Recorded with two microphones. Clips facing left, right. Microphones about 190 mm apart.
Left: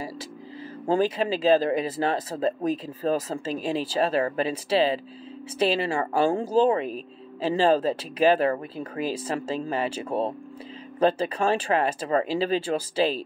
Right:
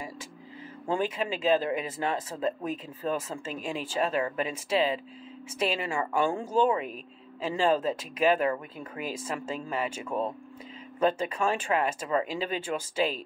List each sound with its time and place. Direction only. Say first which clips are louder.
0.8 s speech: left 6 dB; 35° left (ahead or behind)